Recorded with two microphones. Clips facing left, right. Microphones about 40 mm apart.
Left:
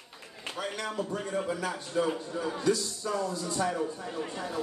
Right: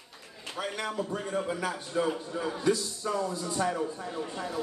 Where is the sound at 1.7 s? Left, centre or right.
Centre.